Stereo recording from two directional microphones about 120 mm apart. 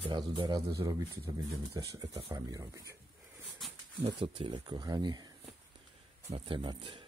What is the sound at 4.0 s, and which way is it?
Speech, 50° right (ahead or behind).